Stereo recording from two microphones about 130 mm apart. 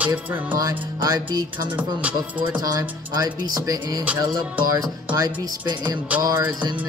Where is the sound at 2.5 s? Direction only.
30° right (ahead or behind).